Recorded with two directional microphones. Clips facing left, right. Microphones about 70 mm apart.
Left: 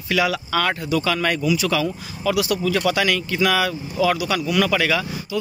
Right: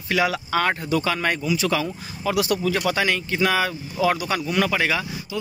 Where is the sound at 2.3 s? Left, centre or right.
Right.